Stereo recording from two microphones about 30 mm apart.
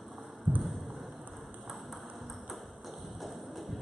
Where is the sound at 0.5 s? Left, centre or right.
Right.